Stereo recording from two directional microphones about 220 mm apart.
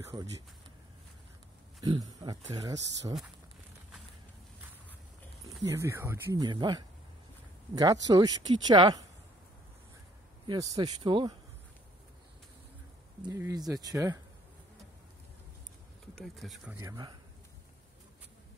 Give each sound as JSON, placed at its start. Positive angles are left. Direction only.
{"t": 0.0, "sound": "speech", "side_deg": -15}
{"t": 1.8, "sound": "speech", "side_deg": -15}
{"t": 5.6, "sound": "speech", "side_deg": -15}
{"t": 10.4, "sound": "speech", "side_deg": -20}
{"t": 13.2, "sound": "speech", "side_deg": -15}
{"t": 16.2, "sound": "speech", "side_deg": 0}
{"t": 16.8, "sound": "speech", "side_deg": -20}